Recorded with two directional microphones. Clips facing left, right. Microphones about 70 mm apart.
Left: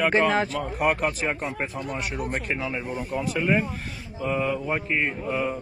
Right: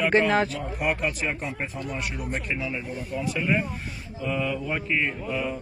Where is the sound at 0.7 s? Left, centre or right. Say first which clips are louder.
Left 3 dB; left.